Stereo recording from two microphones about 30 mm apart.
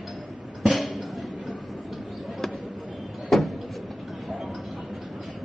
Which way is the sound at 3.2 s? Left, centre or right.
Centre.